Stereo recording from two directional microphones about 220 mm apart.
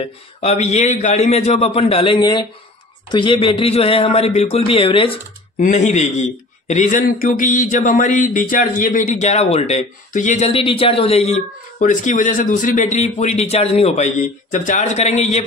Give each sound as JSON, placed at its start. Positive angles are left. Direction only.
{"t": 0.0, "sound": "a man's voice", "side_deg": 30}